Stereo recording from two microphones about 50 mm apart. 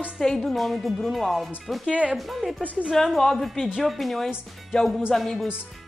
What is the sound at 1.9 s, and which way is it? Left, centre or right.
Speech, right.